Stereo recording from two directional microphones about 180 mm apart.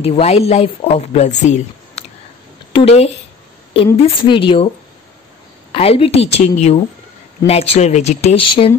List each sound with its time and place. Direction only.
0.0 s speech: 35° left (ahead or behind)
5.7 s speech: 30° left (ahead or behind)